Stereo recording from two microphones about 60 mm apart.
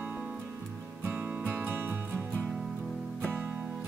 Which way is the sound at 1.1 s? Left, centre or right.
Right.